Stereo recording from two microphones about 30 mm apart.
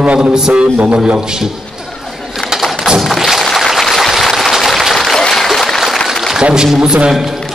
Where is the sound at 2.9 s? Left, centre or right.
Centre.